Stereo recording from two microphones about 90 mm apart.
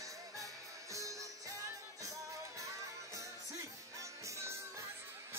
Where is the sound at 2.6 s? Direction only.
35° right (ahead or behind).